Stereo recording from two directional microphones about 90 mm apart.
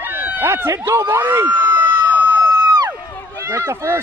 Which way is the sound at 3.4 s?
30° right (ahead or behind).